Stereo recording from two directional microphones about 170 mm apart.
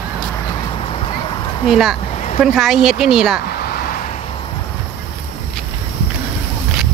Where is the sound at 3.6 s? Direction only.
65° left (ahead or behind).